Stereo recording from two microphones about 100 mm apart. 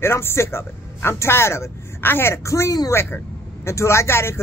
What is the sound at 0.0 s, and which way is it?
A man's voice, 25° left (ahead or behind).